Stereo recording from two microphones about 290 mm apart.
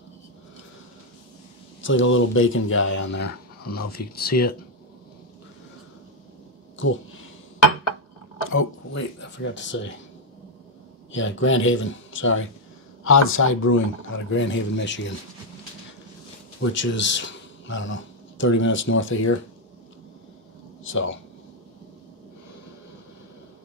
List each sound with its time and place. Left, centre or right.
1.8 s speech: left
8.5 s speech: left
11.1 s speech: left
16.7 s speech: left
20.8 s speech: left